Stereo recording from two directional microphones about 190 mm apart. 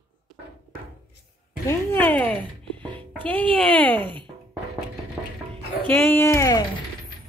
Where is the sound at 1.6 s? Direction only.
10° left (ahead or behind).